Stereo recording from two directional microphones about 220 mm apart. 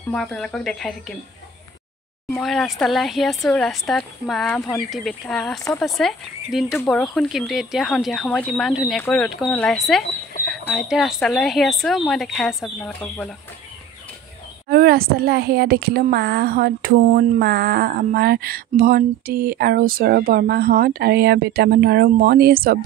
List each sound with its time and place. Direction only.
0.1 s a woman's voice: 5° left (ahead or behind)
2.3 s a woman's voice: centre (ahead or behind)
5.6 s speech: 15° left (ahead or behind)
5.9 s a woman's voice: centre (ahead or behind)
14.7 s speech: 45° right (ahead or behind)